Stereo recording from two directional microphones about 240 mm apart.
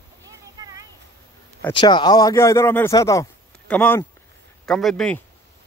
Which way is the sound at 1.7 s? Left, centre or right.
Centre.